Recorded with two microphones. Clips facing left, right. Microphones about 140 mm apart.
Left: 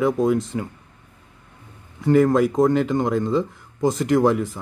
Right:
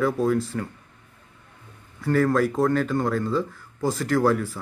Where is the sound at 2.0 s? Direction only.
15° left (ahead or behind).